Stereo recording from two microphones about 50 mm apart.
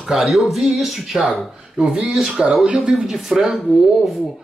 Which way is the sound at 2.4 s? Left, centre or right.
Centre.